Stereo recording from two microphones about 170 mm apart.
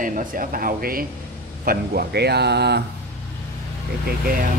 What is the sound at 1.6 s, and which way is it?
Speech, 70° right (ahead or behind).